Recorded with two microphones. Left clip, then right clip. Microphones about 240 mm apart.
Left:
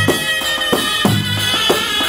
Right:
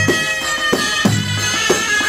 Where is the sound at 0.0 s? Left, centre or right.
Left.